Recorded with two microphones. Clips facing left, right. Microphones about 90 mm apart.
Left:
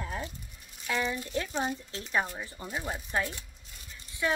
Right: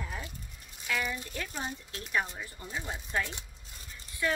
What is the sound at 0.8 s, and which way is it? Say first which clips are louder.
Speech: left 2 dB; 25° left (ahead or behind).